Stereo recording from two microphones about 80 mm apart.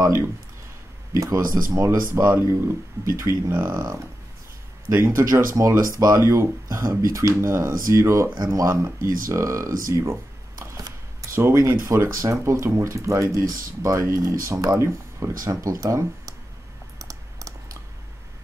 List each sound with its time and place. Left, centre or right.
0.0 s speech: right
3.5 s speech: right
4.9 s speech: right
11.3 s speech: right
17.0 s computer keyboard: right